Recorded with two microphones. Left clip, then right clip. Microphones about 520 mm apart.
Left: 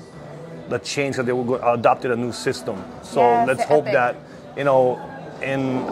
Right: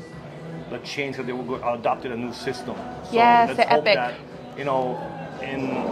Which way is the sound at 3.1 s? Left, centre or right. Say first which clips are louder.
Even; right.